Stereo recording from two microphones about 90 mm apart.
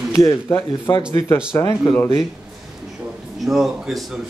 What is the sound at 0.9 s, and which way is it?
Speech, 55° left (ahead or behind).